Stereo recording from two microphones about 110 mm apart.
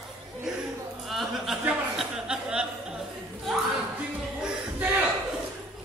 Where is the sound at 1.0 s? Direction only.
Centre (ahead or behind).